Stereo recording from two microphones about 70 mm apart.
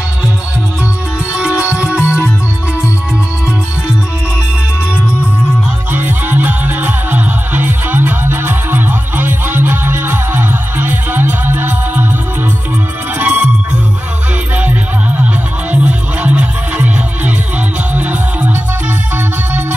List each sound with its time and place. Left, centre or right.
1.3 s music: centre
5.9 s music: right
13.2 s music: right
14.6 s music: right